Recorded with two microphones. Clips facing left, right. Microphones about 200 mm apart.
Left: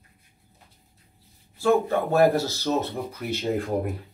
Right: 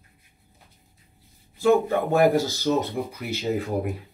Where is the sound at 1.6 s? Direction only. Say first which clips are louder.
Right 2 dB; 15° right (ahead or behind).